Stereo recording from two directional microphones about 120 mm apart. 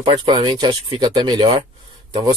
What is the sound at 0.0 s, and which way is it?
Speech, 40° right (ahead or behind).